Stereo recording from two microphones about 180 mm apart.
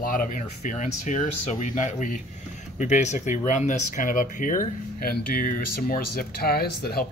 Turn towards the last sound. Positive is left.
turn(degrees=60)  # may be behind; listen again after turning